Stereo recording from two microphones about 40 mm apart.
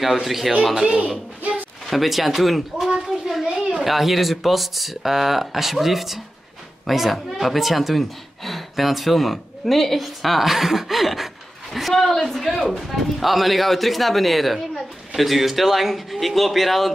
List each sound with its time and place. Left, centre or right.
0.0 s speech: centre
0.8 s a man's voice: right
1.9 s a sound: centre
3.7 s speech: centre